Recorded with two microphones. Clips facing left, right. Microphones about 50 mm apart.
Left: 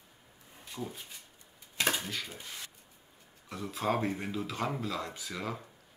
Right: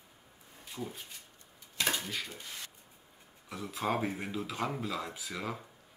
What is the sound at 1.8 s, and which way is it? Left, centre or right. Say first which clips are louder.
Dishes: left 2 dB; left.